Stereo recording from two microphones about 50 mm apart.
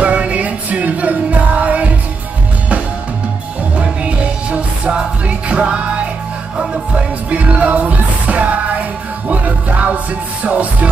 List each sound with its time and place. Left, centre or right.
0.0 s music: right
3.7 s music: right
7.2 s music: right